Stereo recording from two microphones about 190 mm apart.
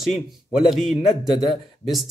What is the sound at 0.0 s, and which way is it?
A man's voice, centre (ahead or behind).